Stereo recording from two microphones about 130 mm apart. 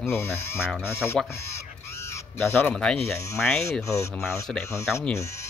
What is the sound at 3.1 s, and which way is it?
Speech, 20° left (ahead or behind).